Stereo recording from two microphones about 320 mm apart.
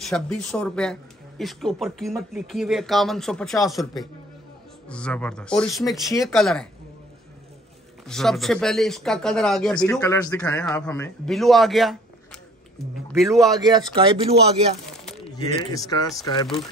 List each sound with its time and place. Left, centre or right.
0.0 s speech: centre
4.8 s speech: centre
8.1 s speech: centre
13.6 s speech: centre
15.2 s speech: centre